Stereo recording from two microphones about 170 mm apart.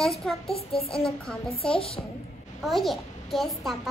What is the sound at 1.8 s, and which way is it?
Speech, 35° left (ahead or behind).